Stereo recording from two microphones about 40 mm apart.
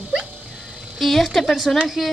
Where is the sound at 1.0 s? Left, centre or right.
Centre.